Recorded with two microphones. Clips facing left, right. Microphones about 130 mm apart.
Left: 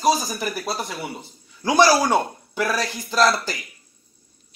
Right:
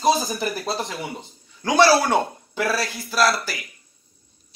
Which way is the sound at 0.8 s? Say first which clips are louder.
Even; 10° left (ahead or behind).